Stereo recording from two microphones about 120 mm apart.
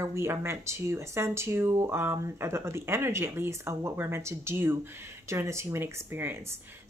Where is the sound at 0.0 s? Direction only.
20° right (ahead or behind).